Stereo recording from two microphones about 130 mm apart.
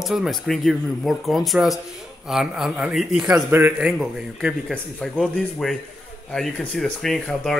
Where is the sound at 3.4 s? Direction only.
15° right (ahead or behind).